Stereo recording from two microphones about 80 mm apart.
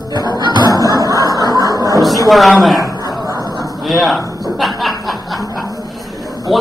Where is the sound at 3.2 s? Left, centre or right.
Right.